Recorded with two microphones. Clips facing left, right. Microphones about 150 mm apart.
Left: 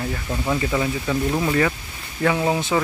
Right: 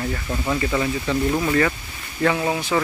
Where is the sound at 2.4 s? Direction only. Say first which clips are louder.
Left 2 dB; 20° left (ahead or behind).